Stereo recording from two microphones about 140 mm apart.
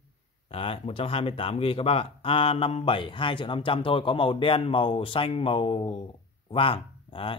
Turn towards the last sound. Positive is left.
turn(degrees=40)  # may be behind; listen again after turning